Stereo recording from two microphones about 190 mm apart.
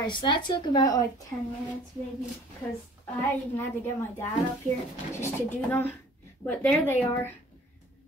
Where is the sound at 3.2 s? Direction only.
10° left (ahead or behind).